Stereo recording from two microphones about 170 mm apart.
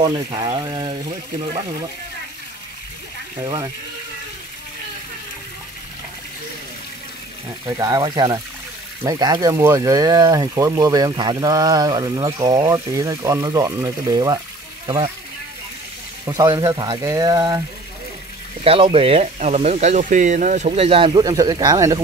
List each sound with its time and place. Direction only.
0.0 s speech: 30° right (ahead or behind)
3.4 s speech: 25° right (ahead or behind)
7.6 s speech: 20° right (ahead or behind)
16.3 s speech: 25° right (ahead or behind)
18.6 s speech: 35° right (ahead or behind)